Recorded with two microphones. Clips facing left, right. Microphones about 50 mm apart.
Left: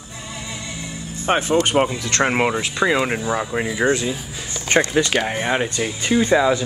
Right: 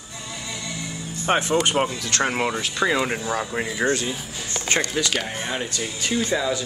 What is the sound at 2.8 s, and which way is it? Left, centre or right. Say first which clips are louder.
Speech: left 3 dB; centre.